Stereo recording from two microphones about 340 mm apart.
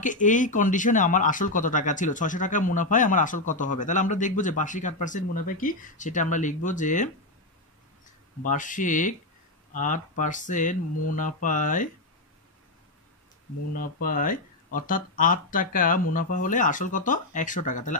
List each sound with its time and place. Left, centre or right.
0.0 s speech: left
8.5 s speech: left
13.7 s speech: left